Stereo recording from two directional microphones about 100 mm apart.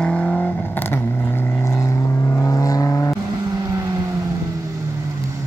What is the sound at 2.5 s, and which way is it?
Vehicle, 35° left (ahead or behind).